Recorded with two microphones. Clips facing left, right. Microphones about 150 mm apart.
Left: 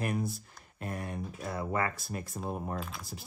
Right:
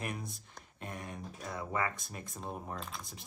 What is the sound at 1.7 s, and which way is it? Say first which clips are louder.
Speech: left 3 dB; 40° left (ahead or behind).